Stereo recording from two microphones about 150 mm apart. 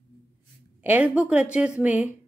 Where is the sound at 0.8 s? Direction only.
10° right (ahead or behind).